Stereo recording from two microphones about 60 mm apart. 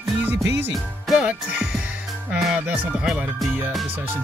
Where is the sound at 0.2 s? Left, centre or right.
Right.